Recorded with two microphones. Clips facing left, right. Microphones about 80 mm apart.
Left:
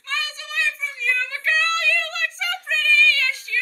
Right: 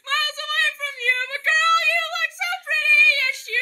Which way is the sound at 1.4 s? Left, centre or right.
Right.